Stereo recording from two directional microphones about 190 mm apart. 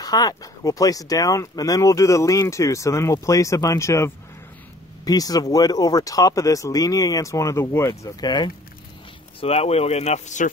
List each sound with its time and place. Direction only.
0.0 s speech: 20° left (ahead or behind)
9.4 s speech: 30° left (ahead or behind)